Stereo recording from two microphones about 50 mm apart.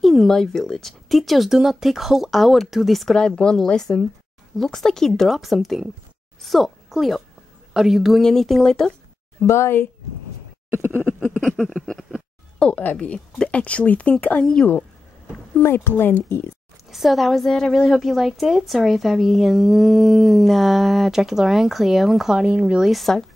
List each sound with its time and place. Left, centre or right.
0.0 s a woman's voice: centre
3.2 s a woman's voice: centre
8.2 s speech: centre
9.5 s speech: left
11.4 s a sound: centre
12.5 s a sound: left
12.8 s speech: left
14.4 s speech: centre
15.6 s speech: left
16.9 s a woman's voice: centre